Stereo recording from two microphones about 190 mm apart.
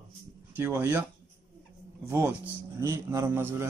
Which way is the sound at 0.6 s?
10° right (ahead or behind).